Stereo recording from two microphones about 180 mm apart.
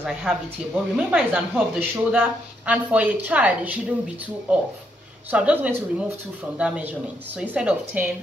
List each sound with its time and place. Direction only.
0.0 s a woman's voice: 5° right (ahead or behind)